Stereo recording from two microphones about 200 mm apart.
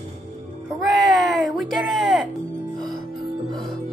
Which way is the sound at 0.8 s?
Centre (ahead or behind).